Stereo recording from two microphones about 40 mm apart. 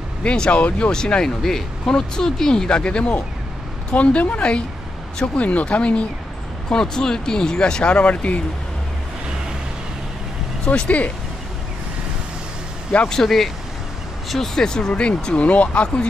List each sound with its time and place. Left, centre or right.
0.2 s speech: left
0.9 s speech: centre; by 4.4 s left
4.4 s speech: left
5.2 s speech: left
6.7 s speech: centre
8.0 s speech: left
10.7 s speech: left
13.1 s speech: centre
14.7 s speech: left